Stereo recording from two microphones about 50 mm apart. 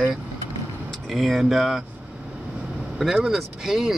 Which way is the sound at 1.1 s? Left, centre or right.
Centre.